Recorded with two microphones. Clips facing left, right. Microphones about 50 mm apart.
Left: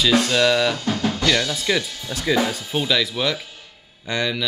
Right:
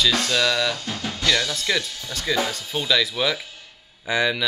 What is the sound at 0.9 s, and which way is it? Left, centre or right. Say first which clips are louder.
Drum: left 7 dB; left.